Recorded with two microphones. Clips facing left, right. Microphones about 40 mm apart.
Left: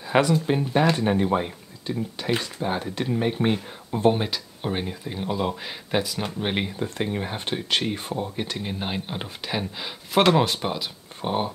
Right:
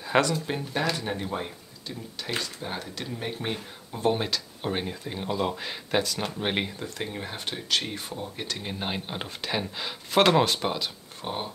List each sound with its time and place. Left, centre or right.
0.2 s speech: centre
4.1 s speech: centre
6.8 s speech: centre
11.2 s speech: centre